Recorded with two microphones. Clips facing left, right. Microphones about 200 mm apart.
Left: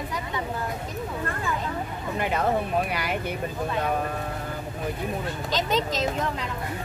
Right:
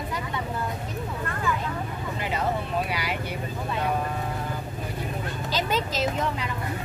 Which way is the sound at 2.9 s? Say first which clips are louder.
Left 1 dB; 50° left (ahead or behind).